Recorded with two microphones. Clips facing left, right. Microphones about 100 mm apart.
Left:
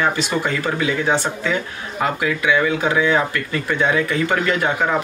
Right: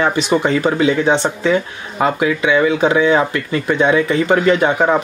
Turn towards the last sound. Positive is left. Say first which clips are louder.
# right 6 dB
turn(degrees=-20)  # may be behind; listen again after turning